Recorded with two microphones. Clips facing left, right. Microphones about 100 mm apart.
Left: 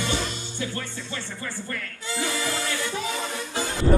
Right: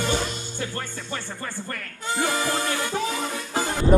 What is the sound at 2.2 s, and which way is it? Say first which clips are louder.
Music: right 4 dB; 45° right (ahead or behind).